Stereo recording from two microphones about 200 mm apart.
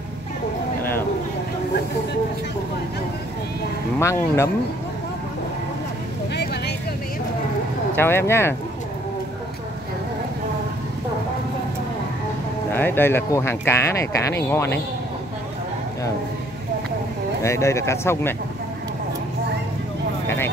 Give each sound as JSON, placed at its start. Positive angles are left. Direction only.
{"t": 4.0, "sound": "speech", "side_deg": 15}
{"t": 6.3, "sound": "vehicle", "side_deg": 55}
{"t": 7.9, "sound": "speech", "side_deg": 10}
{"t": 12.7, "sound": "speech", "side_deg": 10}
{"t": 17.4, "sound": "speech", "side_deg": 15}